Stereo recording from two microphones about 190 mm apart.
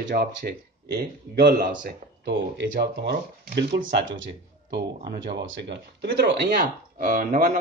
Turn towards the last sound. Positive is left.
turn(degrees=-45)  # may be behind; listen again after turning